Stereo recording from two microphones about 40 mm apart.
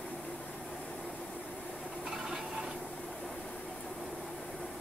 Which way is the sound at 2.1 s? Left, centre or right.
Centre.